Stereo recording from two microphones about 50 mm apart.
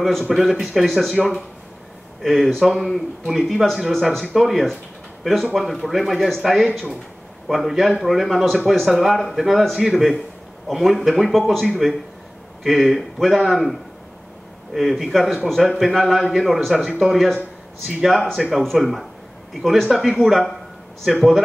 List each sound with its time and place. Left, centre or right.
0.3 s speech: centre
21.1 s a man's voice: centre